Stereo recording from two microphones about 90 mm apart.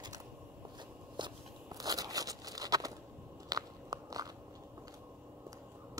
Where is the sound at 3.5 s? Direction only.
45° right (ahead or behind).